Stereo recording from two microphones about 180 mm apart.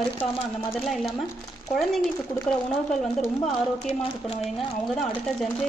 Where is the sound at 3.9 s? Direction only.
35° left (ahead or behind).